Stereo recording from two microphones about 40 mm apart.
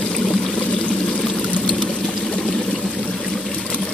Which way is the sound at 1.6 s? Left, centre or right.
Left.